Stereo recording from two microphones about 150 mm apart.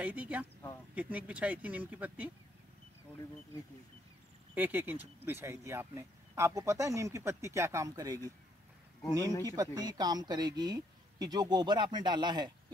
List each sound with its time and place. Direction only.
0.0 s speech: 10° right (ahead or behind)
4.6 s speech: 10° right (ahead or behind)
9.4 s speech: 25° right (ahead or behind)